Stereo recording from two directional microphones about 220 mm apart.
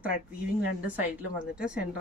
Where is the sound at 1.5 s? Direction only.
5° right (ahead or behind).